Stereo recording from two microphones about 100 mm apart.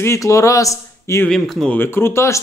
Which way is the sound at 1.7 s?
20° left (ahead or behind).